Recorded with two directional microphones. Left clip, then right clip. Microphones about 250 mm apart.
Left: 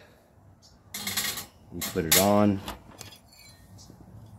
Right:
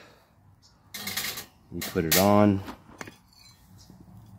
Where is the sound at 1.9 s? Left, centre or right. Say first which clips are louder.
Right 1 dB; right.